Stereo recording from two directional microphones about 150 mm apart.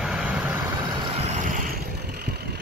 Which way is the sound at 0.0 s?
5° right (ahead or behind).